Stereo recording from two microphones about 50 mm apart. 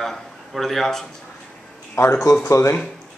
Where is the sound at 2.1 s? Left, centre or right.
Left.